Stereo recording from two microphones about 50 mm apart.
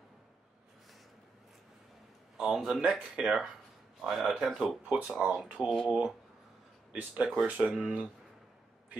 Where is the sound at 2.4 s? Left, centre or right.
Centre.